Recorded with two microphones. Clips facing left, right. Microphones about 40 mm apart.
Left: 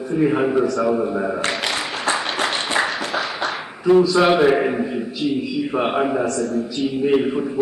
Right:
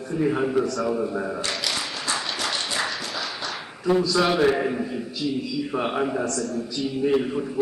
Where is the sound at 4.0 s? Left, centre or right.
Left.